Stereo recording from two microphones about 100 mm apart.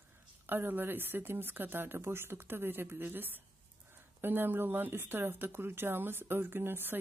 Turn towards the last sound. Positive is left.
turn(degrees=-20)  # may be behind; listen again after turning